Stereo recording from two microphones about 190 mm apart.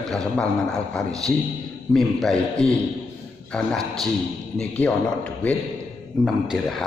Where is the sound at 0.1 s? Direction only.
5° left (ahead or behind).